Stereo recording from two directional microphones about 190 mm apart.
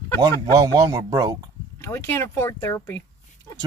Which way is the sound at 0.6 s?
20° right (ahead or behind).